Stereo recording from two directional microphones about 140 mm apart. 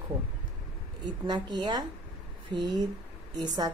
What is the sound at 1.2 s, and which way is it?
A woman's voice, 30° right (ahead or behind).